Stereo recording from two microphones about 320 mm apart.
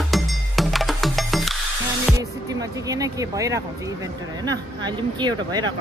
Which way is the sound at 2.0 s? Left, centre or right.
Centre.